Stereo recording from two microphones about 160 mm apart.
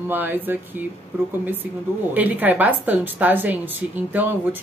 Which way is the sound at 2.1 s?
10° right (ahead or behind).